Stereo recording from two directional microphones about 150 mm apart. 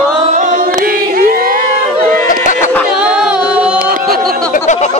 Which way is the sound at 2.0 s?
65° right (ahead or behind).